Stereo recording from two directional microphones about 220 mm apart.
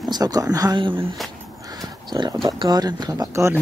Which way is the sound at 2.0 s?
20° right (ahead or behind).